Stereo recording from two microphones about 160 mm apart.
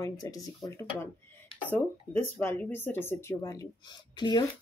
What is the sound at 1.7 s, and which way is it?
Speech, 15° left (ahead or behind).